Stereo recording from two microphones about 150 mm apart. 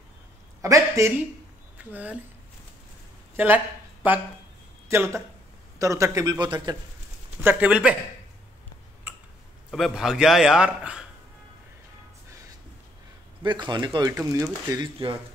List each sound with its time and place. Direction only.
0.6 s a man's voice: 20° right (ahead or behind)
3.3 s speech: 10° right (ahead or behind); by 6.8 s 30° right (ahead or behind)
7.4 s speech: 10° right (ahead or behind)
9.7 s a man's voice: centre (ahead or behind)
13.4 s speech: 30° right (ahead or behind)